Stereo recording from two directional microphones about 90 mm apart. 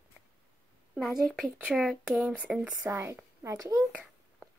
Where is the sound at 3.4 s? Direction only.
40° right (ahead or behind).